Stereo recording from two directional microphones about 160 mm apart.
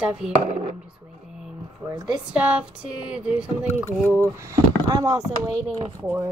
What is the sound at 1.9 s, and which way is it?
Speech, 20° right (ahead or behind).